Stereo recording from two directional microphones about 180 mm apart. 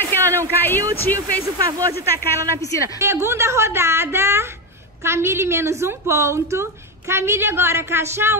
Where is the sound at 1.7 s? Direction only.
20° right (ahead or behind).